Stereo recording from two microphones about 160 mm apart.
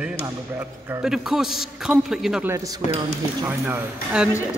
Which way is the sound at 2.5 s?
20° right (ahead or behind).